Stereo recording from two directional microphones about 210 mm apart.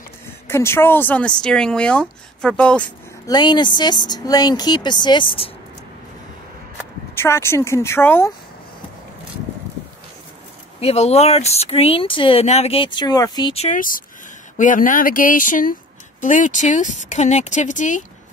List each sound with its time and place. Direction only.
0.5 s speech: 10° left (ahead or behind)
3.3 s speech: 20° left (ahead or behind)
7.2 s speech: 10° left (ahead or behind)
10.8 s speech: 30° left (ahead or behind)
13.7 s speech: 40° left (ahead or behind)